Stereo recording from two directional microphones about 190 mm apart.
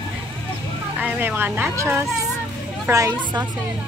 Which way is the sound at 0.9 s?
10° right (ahead or behind).